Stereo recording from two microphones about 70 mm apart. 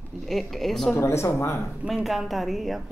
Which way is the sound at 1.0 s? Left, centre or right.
Left.